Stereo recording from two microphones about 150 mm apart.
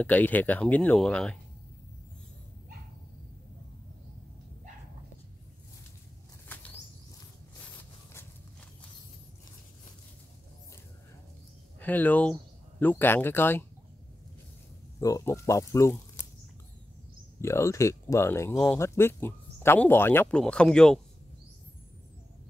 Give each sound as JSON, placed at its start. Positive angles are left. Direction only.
{"t": 0.0, "sound": "speech", "side_deg": 10}
{"t": 11.8, "sound": "speech", "side_deg": 10}
{"t": 15.0, "sound": "speech", "side_deg": 20}
{"t": 17.4, "sound": "speech", "side_deg": 20}